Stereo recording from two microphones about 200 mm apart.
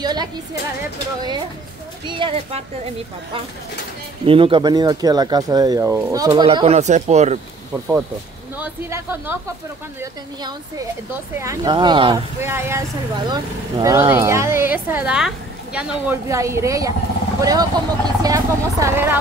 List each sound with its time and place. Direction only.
0.0 s music: 20° right (ahead or behind)
2.0 s speech: 25° right (ahead or behind)
4.3 s speech: 25° right (ahead or behind)
8.5 s speech: 10° right (ahead or behind)
11.3 s speech: 15° right (ahead or behind)
12.4 s speech: 10° right (ahead or behind)